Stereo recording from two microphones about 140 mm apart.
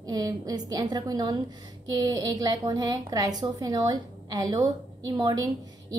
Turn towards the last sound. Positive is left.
turn(degrees=-30)  # may be behind; listen again after turning